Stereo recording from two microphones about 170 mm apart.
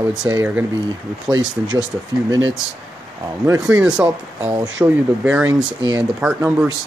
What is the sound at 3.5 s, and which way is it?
Speech, 10° right (ahead or behind).